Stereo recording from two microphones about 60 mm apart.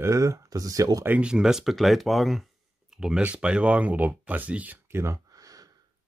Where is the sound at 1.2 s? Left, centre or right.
Centre.